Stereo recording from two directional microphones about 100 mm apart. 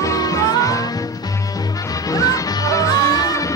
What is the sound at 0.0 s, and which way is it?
Music, 35° left (ahead or behind).